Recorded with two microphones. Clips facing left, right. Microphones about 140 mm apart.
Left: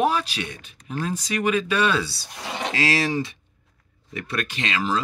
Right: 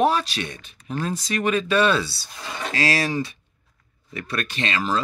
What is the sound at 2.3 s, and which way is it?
Speech, 70° left (ahead or behind).